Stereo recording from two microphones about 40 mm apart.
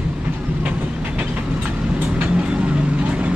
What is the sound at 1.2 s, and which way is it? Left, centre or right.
Vehicle, right.